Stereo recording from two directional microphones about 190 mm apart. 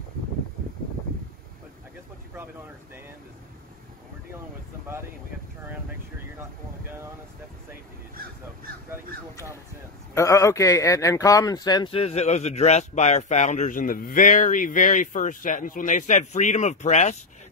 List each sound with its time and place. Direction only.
10.1 s speech: 15° left (ahead or behind); by 17.2 s 35° left (ahead or behind)